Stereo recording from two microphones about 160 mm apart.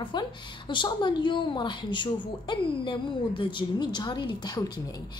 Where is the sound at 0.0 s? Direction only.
30° left (ahead or behind).